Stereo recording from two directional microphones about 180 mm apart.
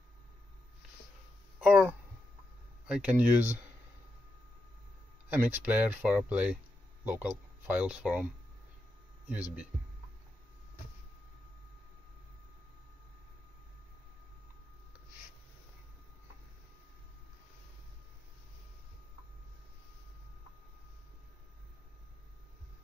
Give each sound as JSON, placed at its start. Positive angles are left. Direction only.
{"t": 1.6, "sound": "a sound", "side_deg": -5}
{"t": 2.9, "sound": "speech", "side_deg": -5}
{"t": 5.3, "sound": "speech", "side_deg": -10}
{"t": 9.3, "sound": "speech", "side_deg": -10}